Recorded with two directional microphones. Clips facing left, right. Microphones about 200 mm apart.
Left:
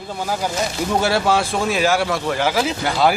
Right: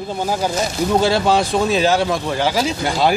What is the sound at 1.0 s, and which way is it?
Speech, 20° right (ahead or behind).